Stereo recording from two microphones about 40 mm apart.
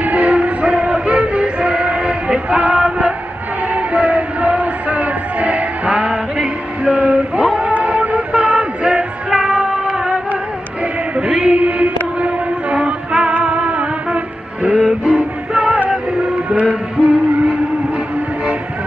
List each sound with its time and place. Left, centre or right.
0.0 s music: right
2.6 s music: right
8.3 s music: right
9.4 s child singing: right
11.1 s a sound: right
12.7 s music: right